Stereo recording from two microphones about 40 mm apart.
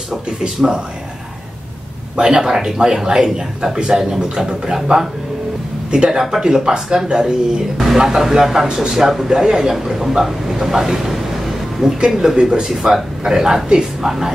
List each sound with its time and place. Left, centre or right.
0.1 s a man's voice: centre
2.1 s a man's voice: right
12.7 s a man's voice: centre